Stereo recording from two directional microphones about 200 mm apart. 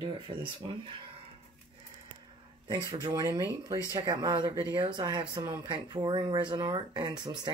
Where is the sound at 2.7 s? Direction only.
20° right (ahead or behind).